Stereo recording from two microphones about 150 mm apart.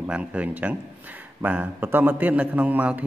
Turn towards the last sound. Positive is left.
turn(degrees=-10)  # may be behind; listen again after turning